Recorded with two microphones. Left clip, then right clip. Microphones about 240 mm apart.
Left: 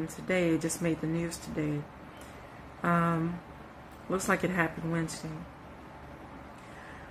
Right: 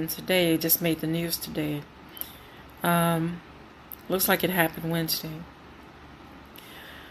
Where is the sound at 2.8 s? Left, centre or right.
Right.